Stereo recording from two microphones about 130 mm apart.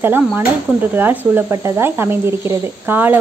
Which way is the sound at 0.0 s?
15° right (ahead or behind).